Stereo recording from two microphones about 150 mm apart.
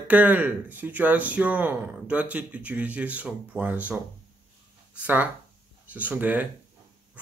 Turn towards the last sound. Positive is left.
turn(degrees=-10)  # may be behind; listen again after turning